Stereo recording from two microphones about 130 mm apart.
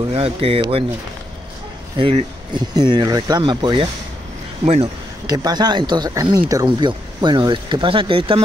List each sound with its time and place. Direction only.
0.1 s speech: 50° right (ahead or behind)
2.0 s speech: 45° right (ahead or behind)
5.2 s speech: 30° right (ahead or behind)